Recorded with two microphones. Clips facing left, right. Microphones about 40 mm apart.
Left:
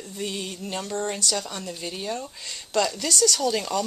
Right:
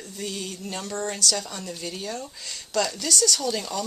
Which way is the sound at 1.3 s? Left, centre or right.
Centre.